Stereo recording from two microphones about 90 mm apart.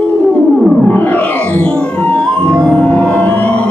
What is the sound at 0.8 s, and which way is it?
Music, 20° left (ahead or behind).